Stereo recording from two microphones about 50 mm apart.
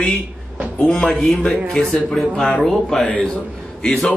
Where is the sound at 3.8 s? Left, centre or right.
Centre.